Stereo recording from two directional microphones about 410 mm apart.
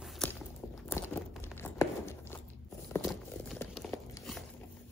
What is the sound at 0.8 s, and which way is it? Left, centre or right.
Tearing, centre.